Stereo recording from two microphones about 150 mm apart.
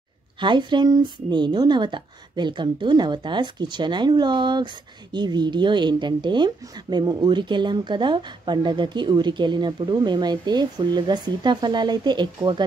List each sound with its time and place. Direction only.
0.4 s speech: 30° right (ahead or behind)